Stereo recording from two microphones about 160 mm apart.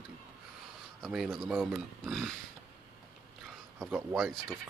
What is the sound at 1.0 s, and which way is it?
Speech, centre (ahead or behind).